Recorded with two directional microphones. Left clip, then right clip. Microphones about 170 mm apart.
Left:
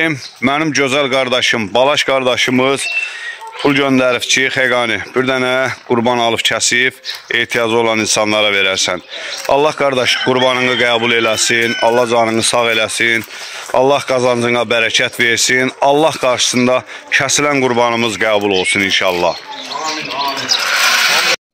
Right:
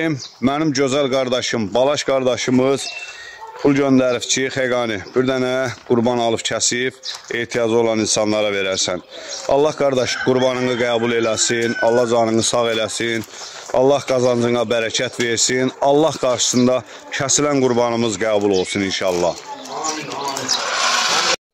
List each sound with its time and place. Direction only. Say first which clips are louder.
0.0 s speech: left 5 dB; centre (ahead or behind)
20.6 s sewing machine: left 6 dB; 20° right (ahead or behind)